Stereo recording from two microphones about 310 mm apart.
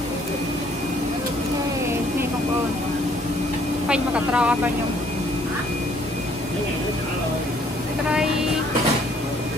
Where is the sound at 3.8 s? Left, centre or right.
Centre.